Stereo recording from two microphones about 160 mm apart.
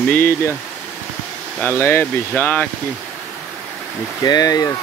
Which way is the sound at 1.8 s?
15° left (ahead or behind).